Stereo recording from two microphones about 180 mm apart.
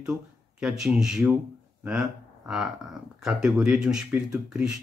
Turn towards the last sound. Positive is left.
turn(degrees=-5)  # may be behind; listen again after turning